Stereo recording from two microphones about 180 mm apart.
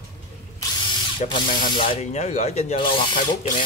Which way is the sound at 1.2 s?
25° left (ahead or behind).